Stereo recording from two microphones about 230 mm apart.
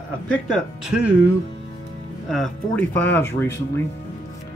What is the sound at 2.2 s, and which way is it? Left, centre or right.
Speech, centre.